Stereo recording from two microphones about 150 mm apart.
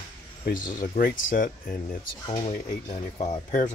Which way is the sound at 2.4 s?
50° left (ahead or behind).